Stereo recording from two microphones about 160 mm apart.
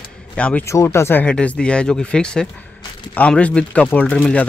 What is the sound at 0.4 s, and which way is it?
Speech, 5° left (ahead or behind).